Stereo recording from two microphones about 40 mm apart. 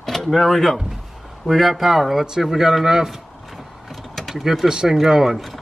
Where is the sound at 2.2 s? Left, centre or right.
Centre.